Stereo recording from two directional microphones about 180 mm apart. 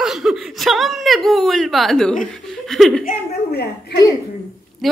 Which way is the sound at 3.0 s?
60° left (ahead or behind).